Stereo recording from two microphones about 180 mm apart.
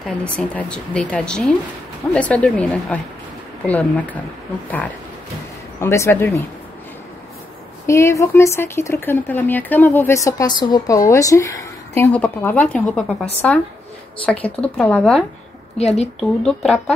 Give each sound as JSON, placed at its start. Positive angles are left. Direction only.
{"t": 0.0, "sound": "speech", "side_deg": 5}
{"t": 5.8, "sound": "speech", "side_deg": 15}
{"t": 7.8, "sound": "speech", "side_deg": 15}
{"t": 15.8, "sound": "a woman's voice", "side_deg": 35}
{"t": 16.2, "sound": "speech", "side_deg": 5}